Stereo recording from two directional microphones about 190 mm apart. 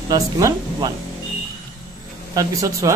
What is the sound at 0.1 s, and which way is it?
Speech, 20° right (ahead or behind).